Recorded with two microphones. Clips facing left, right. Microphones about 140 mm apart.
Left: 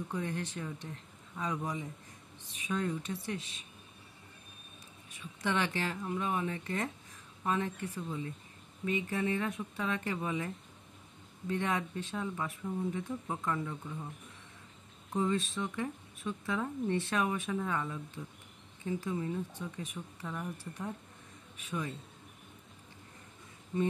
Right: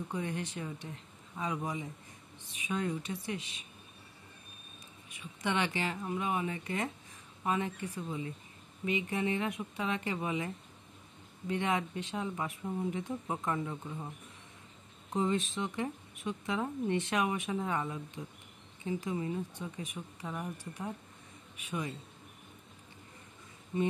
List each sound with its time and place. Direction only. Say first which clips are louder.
0.1 s speech: even; 10° right (ahead or behind)
5.1 s speech: even; 10° right (ahead or behind)
15.1 s speech: even; 20° right (ahead or behind)
21.5 s speech: even; 10° right (ahead or behind)
23.7 s speech: even; 10° right (ahead or behind)